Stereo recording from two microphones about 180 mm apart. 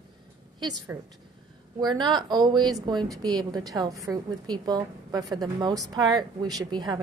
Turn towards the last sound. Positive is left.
turn(degrees=-20)  # may be behind; listen again after turning